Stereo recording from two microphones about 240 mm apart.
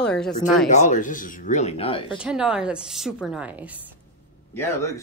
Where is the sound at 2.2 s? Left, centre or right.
Centre.